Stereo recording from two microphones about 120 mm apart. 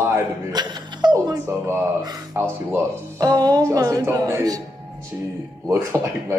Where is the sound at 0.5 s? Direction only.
35° right (ahead or behind); by 2.0 s 20° right (ahead or behind).